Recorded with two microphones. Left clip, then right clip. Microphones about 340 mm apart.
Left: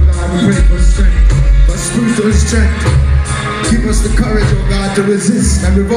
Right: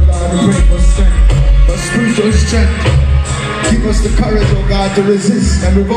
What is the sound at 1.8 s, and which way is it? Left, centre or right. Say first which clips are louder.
Music: right 1 dB; right.